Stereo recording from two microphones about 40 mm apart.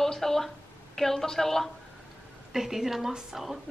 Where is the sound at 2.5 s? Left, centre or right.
Centre.